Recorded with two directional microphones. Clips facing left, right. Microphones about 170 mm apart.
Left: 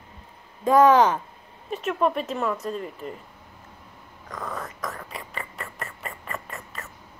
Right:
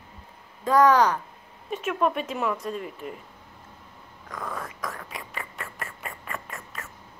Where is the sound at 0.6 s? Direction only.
25° left (ahead or behind).